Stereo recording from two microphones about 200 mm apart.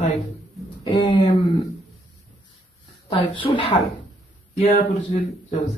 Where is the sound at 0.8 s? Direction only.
25° left (ahead or behind).